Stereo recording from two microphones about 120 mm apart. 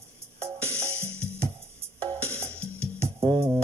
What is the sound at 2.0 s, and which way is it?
Music, 60° right (ahead or behind).